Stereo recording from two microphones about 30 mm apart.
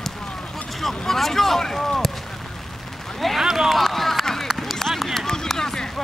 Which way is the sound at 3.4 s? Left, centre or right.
Centre.